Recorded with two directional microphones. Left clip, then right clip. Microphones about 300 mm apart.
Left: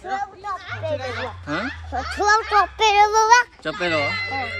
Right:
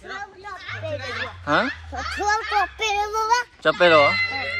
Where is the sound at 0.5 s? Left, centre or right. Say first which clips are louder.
Left 2 dB; left.